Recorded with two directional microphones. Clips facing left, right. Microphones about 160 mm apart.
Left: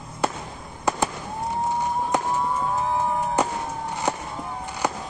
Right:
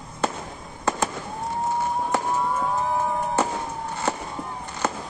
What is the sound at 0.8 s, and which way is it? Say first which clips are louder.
Fireworks: left 1 dB; 15° left (ahead or behind).